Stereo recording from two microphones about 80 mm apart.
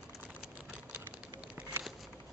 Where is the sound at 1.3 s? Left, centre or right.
Centre.